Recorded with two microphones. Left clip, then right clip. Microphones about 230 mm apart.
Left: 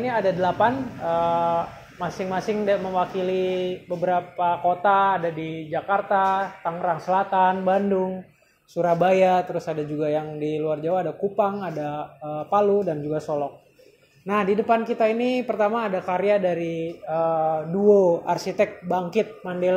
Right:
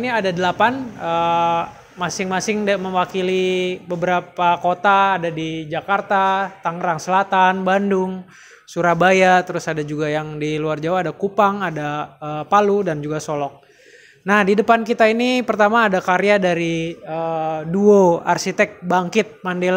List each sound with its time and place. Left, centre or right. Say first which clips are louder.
0.0 s speech: right 3 dB; right